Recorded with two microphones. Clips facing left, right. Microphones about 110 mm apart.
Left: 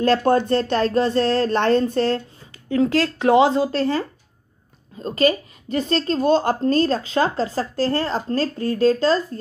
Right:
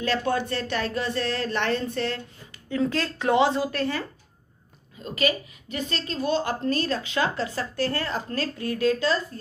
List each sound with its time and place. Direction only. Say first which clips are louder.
0.0 s a woman's voice: left 8 dB; 40° left (ahead or behind)
3.2 s a woman's voice: left 5 dB; 25° left (ahead or behind)